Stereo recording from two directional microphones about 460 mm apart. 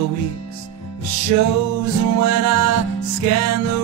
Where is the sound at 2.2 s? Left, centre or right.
Right.